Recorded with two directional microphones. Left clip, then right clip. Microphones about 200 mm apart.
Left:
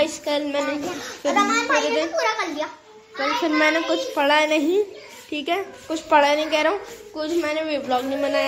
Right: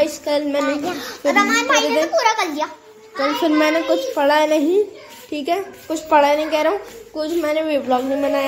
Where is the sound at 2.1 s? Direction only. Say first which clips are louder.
Right 6 dB; 55° right (ahead or behind).